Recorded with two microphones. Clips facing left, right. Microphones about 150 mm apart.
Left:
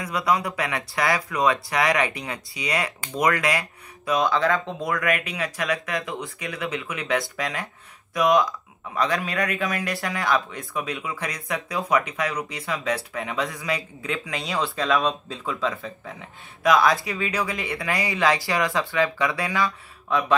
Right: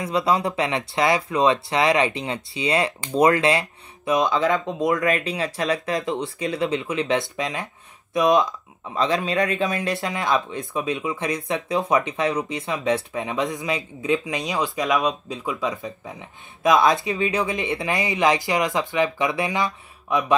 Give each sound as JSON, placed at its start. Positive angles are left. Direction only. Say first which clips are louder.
{"t": 0.0, "sound": "speech", "louder": "right 3 dB", "side_deg": -25}